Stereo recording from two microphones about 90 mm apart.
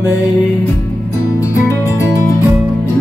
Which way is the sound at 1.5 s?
35° left (ahead or behind).